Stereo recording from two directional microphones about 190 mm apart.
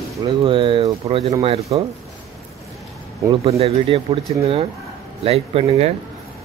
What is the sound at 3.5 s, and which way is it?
Speech, 30° right (ahead or behind).